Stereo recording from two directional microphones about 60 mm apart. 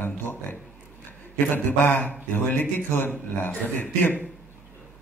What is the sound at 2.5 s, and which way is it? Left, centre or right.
Speech, left.